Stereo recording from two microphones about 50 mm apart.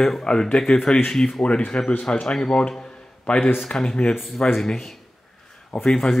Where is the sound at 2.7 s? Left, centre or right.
Centre.